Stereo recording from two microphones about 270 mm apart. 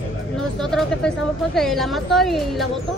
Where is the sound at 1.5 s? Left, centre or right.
Centre.